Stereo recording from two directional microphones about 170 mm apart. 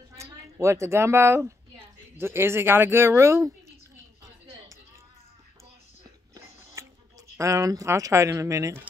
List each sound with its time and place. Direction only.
0.2 s a woman's voice: 15° right (ahead or behind)
6.3 s music: 15° right (ahead or behind)
7.3 s speech: 15° right (ahead or behind)